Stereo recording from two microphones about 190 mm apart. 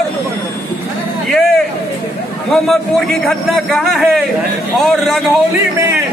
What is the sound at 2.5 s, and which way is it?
A man's voice, 5° left (ahead or behind).